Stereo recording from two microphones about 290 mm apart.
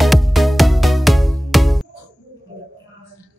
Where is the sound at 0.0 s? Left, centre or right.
Centre.